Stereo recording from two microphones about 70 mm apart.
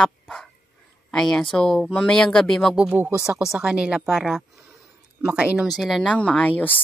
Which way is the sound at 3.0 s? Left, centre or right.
Right.